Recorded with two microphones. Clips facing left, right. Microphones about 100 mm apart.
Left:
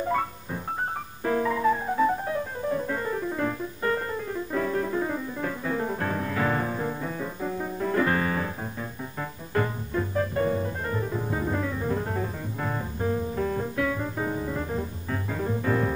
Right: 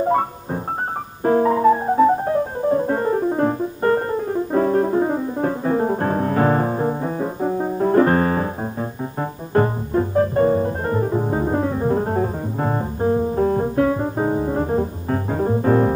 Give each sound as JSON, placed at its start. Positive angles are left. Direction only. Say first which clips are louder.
{"t": 1.2, "sound": "music", "louder": "right 9 dB", "side_deg": -40}
{"t": 9.5, "sound": "music", "louder": "right 9 dB", "side_deg": -40}